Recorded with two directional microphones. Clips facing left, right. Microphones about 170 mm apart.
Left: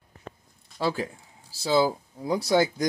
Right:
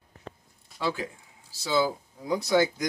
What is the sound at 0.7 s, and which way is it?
Speech, 35° left (ahead or behind).